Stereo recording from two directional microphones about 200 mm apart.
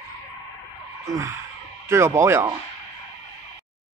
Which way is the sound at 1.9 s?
15° right (ahead or behind).